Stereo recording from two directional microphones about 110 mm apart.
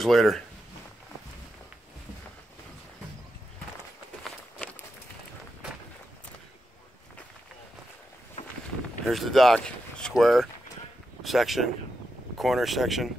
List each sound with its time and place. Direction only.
0.0 s speech: centre (ahead or behind)
4.6 s a sound: 15° left (ahead or behind)
9.0 s speech: centre (ahead or behind)